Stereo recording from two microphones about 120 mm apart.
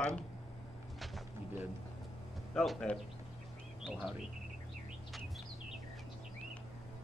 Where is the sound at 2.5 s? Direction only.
5° left (ahead or behind).